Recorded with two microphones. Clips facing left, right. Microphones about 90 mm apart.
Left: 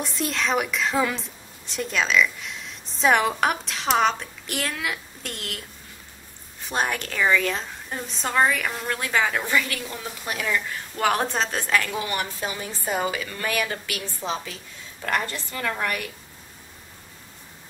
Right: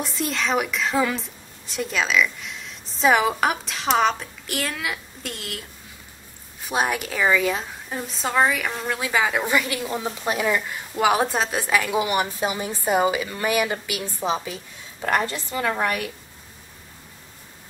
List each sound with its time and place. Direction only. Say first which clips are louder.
0.0 s a woman's voice: right 1 dB; centre (ahead or behind); by 16.1 s 20° right (ahead or behind)